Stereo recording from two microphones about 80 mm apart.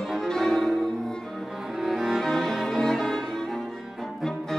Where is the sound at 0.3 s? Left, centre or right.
Centre.